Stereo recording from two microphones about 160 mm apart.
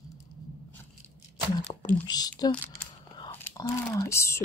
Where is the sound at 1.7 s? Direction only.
30° left (ahead or behind).